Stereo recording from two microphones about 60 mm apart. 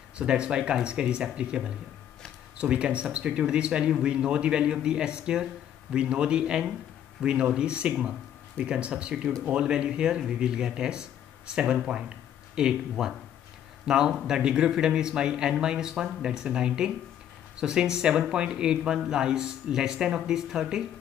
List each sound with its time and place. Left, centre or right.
0.2 s speech: centre